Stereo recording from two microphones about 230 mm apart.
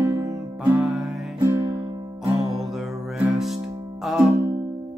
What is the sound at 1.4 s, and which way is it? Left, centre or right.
Music, centre.